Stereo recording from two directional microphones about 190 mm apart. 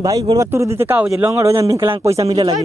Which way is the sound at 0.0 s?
20° right (ahead or behind).